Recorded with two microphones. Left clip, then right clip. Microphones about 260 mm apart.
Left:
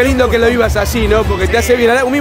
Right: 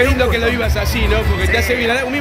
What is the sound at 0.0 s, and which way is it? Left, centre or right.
Speech, left.